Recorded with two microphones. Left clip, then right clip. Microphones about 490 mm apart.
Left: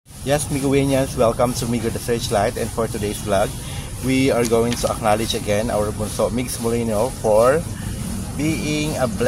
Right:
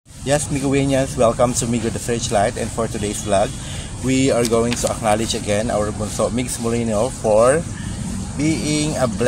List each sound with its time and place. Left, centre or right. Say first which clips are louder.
0.3 s speech: even; left